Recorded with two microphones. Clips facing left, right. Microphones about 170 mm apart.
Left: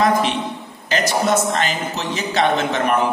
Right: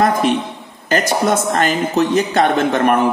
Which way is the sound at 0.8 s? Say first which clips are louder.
Right 3 dB; 50° right (ahead or behind).